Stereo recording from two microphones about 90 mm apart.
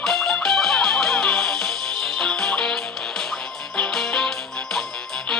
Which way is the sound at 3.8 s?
5° left (ahead or behind).